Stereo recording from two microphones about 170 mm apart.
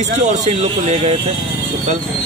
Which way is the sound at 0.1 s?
40° right (ahead or behind).